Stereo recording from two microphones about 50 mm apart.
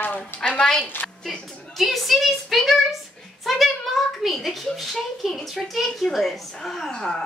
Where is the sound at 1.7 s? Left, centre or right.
Centre.